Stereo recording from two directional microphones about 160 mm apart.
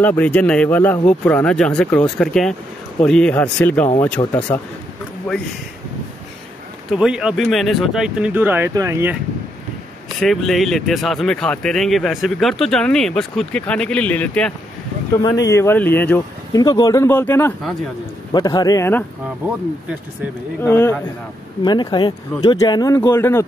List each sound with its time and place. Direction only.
0.0 s speech: 10° left (ahead or behind)
4.2 s a man's voice: 25° left (ahead or behind)
5.3 s speech: 5° left (ahead or behind)
6.9 s speech: 5° right (ahead or behind)
10.2 s speech: centre (ahead or behind)
15.2 s speech: 20° left (ahead or behind)
16.5 s speech: 25° left (ahead or behind)
18.3 s a man's voice: 25° left (ahead or behind)
20.6 s speech: 15° left (ahead or behind)
21.6 s a man's voice: 30° left (ahead or behind)